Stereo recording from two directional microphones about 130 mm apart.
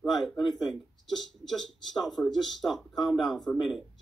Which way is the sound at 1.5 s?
Centre (ahead or behind).